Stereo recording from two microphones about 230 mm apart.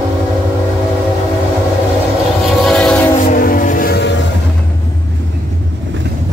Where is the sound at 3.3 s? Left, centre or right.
Left.